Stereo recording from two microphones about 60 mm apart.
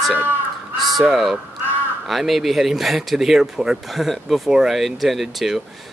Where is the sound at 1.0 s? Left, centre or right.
Centre.